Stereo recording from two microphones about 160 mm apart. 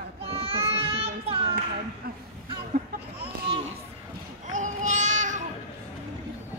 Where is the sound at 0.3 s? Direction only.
35° right (ahead or behind).